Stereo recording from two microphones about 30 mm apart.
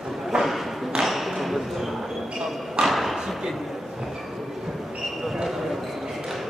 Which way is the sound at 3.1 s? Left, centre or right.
Centre.